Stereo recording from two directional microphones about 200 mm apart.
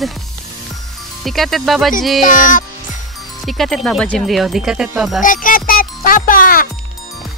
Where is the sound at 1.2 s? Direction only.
Centre (ahead or behind).